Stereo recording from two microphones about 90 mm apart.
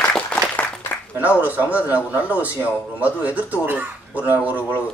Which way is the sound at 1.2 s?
20° right (ahead or behind).